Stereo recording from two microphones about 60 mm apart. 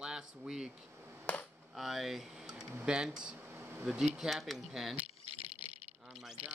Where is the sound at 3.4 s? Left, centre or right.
Right.